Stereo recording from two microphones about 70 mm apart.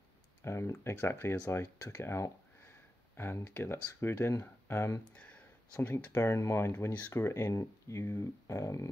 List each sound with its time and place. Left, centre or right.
0.5 s speech: left
5.0 s a sound: centre
5.9 s speech: left
6.3 s speech: left
6.9 s speech: left
7.2 s speech: left